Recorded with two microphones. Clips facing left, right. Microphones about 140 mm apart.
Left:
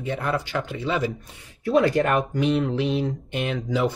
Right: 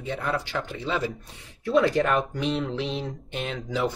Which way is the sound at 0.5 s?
10° left (ahead or behind).